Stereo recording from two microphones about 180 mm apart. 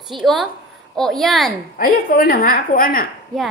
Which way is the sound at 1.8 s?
55° left (ahead or behind).